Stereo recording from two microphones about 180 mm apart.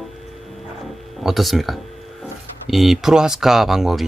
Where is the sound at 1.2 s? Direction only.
Centre (ahead or behind).